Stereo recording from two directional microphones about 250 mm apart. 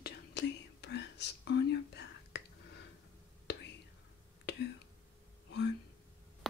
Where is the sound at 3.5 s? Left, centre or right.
Left.